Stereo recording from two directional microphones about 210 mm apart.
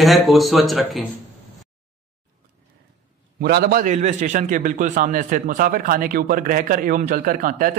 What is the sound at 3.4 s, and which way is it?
A man's voice, 50° right (ahead or behind).